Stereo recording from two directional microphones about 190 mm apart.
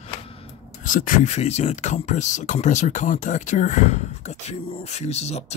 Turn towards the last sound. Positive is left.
turn(degrees=35)  # may be behind; listen again after turning